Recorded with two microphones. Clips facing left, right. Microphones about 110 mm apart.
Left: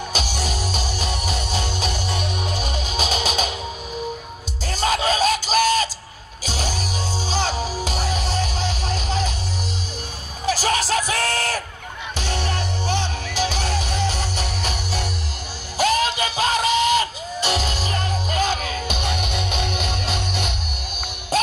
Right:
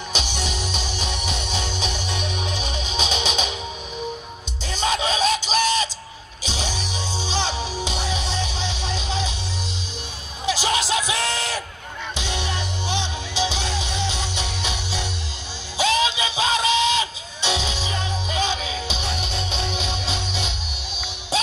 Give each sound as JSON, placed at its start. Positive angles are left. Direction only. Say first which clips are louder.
{"t": 0.1, "sound": "music", "louder": "even", "side_deg": 40}
{"t": 5.0, "sound": "music", "louder": "left 3 dB", "side_deg": 45}
{"t": 5.5, "sound": "a sound", "louder": "left 3 dB", "side_deg": 45}
{"t": 6.4, "sound": "music", "louder": "left 2 dB", "side_deg": 45}
{"t": 10.4, "sound": "music", "louder": "left 2 dB", "side_deg": 45}
{"t": 11.2, "sound": "a sound", "louder": "left 3 dB", "side_deg": 45}
{"t": 12.2, "sound": "music", "louder": "left 3 dB", "side_deg": 45}